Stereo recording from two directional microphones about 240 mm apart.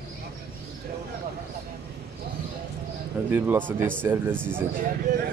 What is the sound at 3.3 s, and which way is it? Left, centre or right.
Speech, centre.